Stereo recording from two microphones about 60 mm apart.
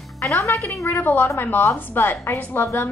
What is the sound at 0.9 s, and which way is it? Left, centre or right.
A woman's voice, left.